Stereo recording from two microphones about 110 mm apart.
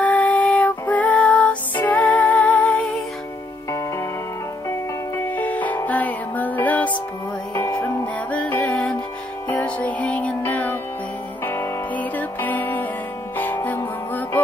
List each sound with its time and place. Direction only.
0.0 s music: 15° left (ahead or behind)
4.6 s music: 25° left (ahead or behind)